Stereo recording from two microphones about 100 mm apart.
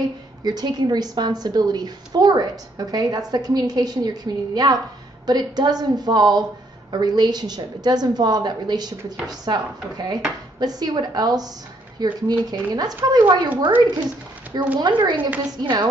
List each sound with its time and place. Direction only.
0.4 s a woman's voice: 45° right (ahead or behind)
13.7 s speech: 20° right (ahead or behind)
14.0 s a woman's voice: 45° right (ahead or behind)
15.1 s speech: 15° right (ahead or behind)
15.6 s a woman's voice: 50° right (ahead or behind)